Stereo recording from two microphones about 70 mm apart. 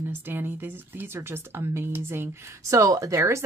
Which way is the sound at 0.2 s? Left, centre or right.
Right.